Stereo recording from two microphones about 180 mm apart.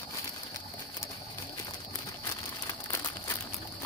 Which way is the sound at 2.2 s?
15° left (ahead or behind).